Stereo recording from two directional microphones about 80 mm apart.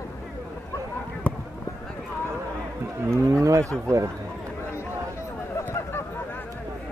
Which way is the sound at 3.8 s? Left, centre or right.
Right.